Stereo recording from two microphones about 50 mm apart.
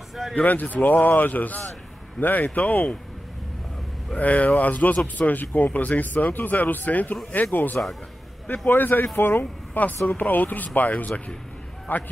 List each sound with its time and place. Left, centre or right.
0.4 s speech: left
4.2 s speech: left
10.0 s speech: left